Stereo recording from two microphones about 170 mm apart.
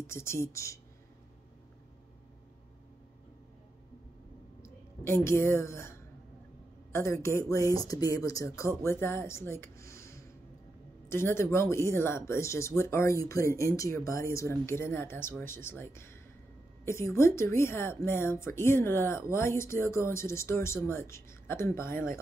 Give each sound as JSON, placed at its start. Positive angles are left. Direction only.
{"t": 0.0, "sound": "a woman's voice", "side_deg": 15}
{"t": 4.6, "sound": "a woman's voice", "side_deg": 15}